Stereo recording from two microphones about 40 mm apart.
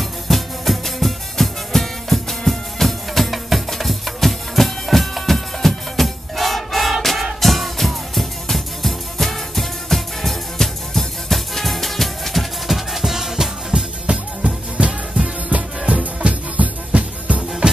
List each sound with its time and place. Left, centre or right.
0.3 s music: centre
13.7 s music: right